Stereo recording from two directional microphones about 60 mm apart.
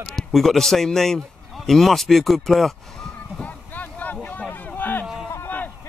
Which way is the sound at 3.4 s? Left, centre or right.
Left.